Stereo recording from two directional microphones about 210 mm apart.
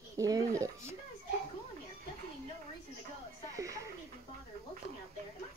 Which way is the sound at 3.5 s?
15° right (ahead or behind).